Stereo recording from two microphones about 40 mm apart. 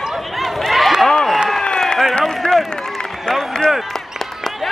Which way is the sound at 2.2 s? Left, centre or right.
Centre.